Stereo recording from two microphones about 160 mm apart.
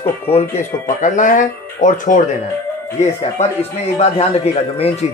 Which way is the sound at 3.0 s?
40° left (ahead or behind).